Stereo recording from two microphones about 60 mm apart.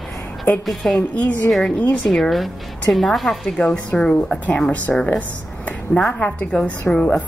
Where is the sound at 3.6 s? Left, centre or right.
Centre.